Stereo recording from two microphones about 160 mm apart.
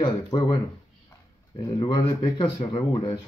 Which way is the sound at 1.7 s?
25° left (ahead or behind).